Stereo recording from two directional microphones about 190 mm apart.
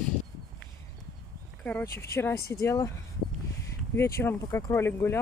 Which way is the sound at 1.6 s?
10° left (ahead or behind).